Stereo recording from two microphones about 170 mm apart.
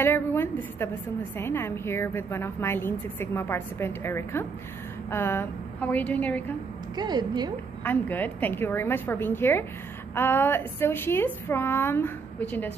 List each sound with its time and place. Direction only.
0.0 s a woman's voice: 15° left (ahead or behind)
7.0 s a woman's voice: 25° right (ahead or behind)
7.8 s a woman's voice: 10° left (ahead or behind)